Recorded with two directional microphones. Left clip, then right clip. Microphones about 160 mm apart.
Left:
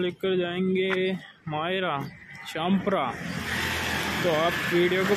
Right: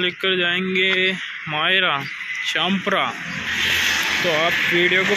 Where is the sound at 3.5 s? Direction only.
50° left (ahead or behind); by 4.3 s 85° left.